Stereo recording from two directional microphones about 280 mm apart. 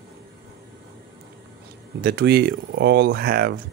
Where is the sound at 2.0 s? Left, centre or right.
Right.